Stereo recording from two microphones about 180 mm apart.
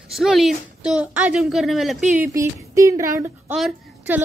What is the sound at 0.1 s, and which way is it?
Speech, centre (ahead or behind).